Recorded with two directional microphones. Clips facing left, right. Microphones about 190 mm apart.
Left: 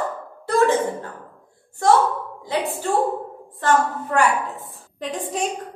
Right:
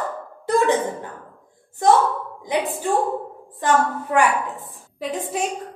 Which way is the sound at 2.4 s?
15° right (ahead or behind).